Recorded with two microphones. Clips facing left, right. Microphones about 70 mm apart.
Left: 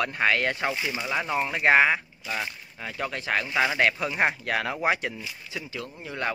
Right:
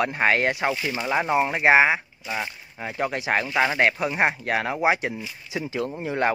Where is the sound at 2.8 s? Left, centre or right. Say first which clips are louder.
Right 5 dB; right.